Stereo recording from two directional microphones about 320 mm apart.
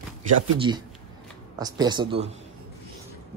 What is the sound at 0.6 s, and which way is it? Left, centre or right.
Speech, centre.